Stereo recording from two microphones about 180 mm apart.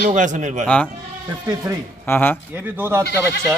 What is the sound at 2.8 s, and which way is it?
Speech, 15° right (ahead or behind).